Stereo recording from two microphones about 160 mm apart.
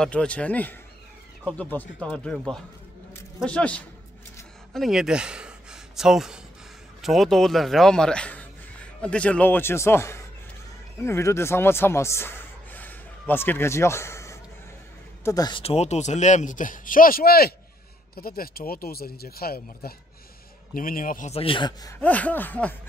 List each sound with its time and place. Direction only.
0.0 s a man's voice: 5° left (ahead or behind); by 15.6 s 25° left (ahead or behind)
15.6 s speech: 40° left (ahead or behind); by 19.9 s 70° left (ahead or behind)
20.7 s a man's voice: 60° left (ahead or behind)
21.3 s speech: 35° left (ahead or behind)
22.0 s a man's voice: 10° left (ahead or behind)